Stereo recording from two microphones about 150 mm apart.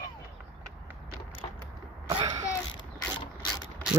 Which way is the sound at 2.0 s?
30° right (ahead or behind).